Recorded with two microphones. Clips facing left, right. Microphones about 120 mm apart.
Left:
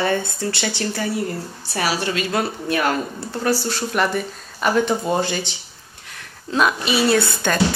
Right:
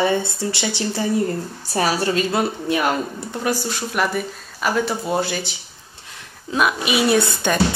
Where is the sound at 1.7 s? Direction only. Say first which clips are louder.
Right 3 dB; 30° right (ahead or behind).